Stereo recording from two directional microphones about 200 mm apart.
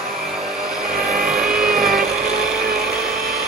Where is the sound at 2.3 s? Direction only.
Centre (ahead or behind).